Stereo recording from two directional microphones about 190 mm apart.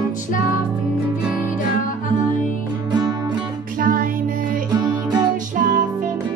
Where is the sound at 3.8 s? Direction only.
45° right (ahead or behind).